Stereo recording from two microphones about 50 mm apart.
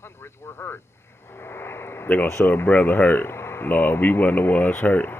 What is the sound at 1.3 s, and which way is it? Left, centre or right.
Vehicle, left.